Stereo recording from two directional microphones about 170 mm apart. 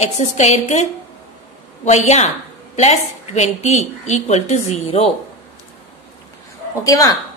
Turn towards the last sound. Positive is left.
turn(degrees=20)  # may be behind; listen again after turning